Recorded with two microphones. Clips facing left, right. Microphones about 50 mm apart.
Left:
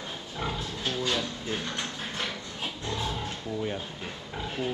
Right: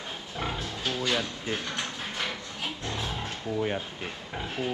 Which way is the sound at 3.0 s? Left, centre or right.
Centre.